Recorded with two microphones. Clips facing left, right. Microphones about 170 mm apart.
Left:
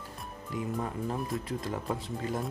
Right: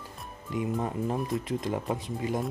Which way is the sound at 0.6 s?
20° right (ahead or behind).